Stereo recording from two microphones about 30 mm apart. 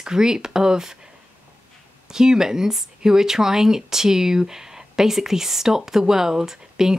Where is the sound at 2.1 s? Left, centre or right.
Centre.